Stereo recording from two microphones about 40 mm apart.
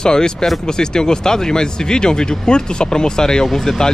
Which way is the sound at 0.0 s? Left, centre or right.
Centre.